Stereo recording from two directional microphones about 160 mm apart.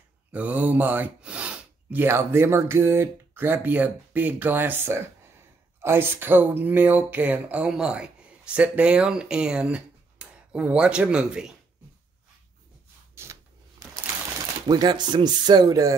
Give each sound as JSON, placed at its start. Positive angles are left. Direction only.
{"t": 0.3, "sound": "speech", "side_deg": -10}
{"t": 13.1, "sound": "shuffling cards", "side_deg": -15}
{"t": 14.7, "sound": "speech", "side_deg": -25}